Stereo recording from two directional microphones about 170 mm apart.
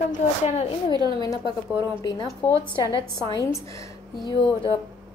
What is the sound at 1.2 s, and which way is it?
Speech, 25° left (ahead or behind).